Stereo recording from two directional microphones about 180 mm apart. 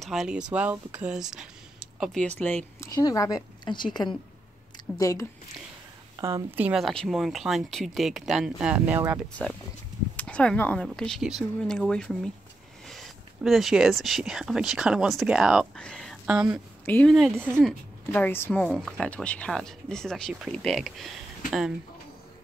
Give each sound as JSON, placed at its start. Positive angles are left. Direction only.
{"t": 0.0, "sound": "speech", "side_deg": 0}
{"t": 6.1, "sound": "a woman's voice", "side_deg": -15}
{"t": 6.8, "sound": "speech", "side_deg": 0}
{"t": 9.3, "sound": "speech", "side_deg": 5}
{"t": 16.8, "sound": "speech", "side_deg": 10}